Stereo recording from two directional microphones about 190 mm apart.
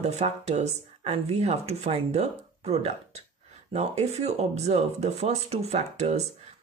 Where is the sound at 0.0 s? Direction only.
35° right (ahead or behind).